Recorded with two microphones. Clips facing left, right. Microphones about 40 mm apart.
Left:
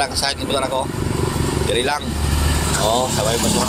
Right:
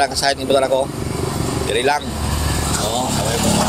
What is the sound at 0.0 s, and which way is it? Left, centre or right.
Speech, centre.